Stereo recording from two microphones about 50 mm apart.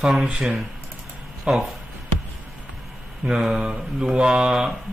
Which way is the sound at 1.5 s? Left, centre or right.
Right.